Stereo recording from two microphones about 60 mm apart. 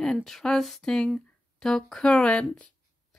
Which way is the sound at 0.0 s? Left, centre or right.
Centre.